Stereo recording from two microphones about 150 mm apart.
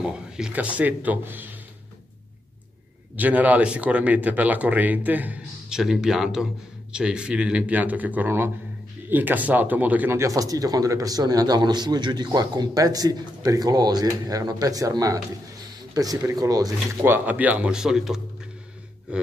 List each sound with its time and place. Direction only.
0.0 s speech: 5° right (ahead or behind)
3.2 s speech: 10° right (ahead or behind)
17.1 s speech: 10° right (ahead or behind)